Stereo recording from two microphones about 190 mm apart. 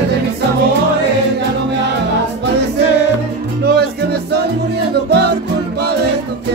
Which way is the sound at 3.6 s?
60° right (ahead or behind).